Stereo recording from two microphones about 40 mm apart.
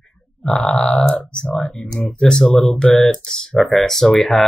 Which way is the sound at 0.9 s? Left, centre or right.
Left.